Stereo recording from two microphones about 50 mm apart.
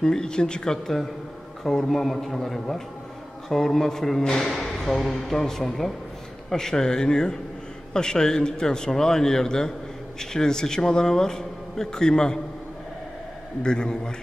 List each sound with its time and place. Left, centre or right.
0.0 s a man's voice: centre
13.6 s a man's voice: centre